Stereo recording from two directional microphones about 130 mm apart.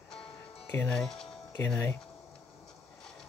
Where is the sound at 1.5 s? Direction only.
15° left (ahead or behind).